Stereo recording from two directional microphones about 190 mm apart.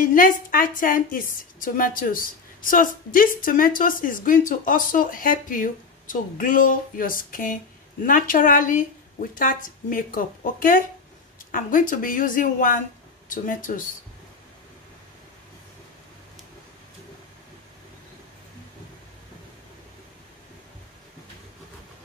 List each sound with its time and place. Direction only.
0.1 s a woman's voice: 45° left (ahead or behind)